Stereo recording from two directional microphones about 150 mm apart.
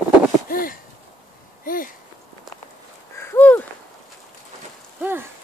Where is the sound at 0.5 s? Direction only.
70° left (ahead or behind).